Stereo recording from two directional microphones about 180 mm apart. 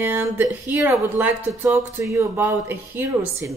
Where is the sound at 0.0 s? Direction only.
10° right (ahead or behind).